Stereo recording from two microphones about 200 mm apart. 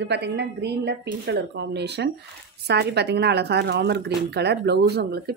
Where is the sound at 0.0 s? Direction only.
60° right (ahead or behind).